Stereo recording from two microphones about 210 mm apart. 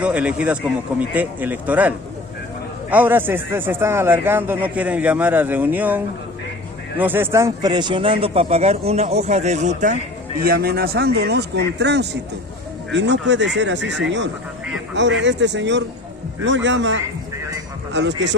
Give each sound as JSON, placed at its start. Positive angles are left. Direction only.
{"t": 0.0, "sound": "speech", "side_deg": -5}
{"t": 10.4, "sound": "a man's voice", "side_deg": -45}